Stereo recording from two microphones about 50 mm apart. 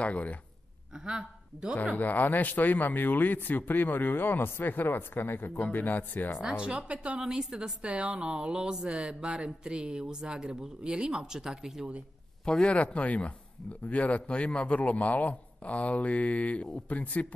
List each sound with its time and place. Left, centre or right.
0.0 s a man's voice: left
0.9 s a man's voice: centre
2.0 s a man's voice: left
6.6 s speech: centre
12.4 s a man's voice: centre